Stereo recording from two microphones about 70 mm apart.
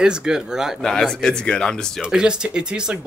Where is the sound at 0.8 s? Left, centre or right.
Centre.